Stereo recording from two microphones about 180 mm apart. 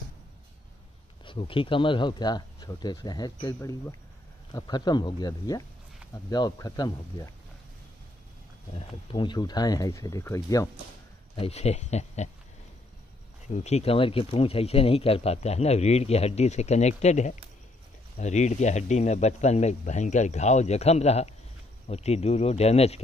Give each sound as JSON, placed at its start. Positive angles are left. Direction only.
{"t": 1.2, "sound": "speech", "side_deg": 30}
{"t": 8.7, "sound": "speech", "side_deg": 25}
{"t": 11.3, "sound": "speech", "side_deg": 35}
{"t": 13.5, "sound": "speech", "side_deg": 40}